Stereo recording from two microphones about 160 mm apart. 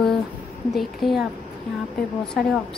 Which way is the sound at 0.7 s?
Centre (ahead or behind).